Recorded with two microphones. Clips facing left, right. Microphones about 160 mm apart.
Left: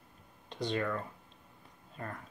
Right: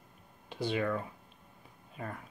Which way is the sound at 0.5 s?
5° right (ahead or behind).